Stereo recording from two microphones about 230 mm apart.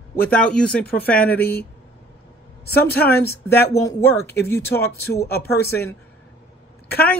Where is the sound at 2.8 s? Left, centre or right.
Centre.